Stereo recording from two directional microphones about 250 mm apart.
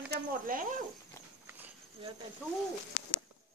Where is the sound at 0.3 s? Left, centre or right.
Right.